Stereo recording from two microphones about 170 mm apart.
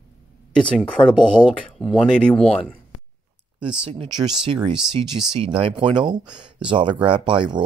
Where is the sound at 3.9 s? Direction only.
30° right (ahead or behind).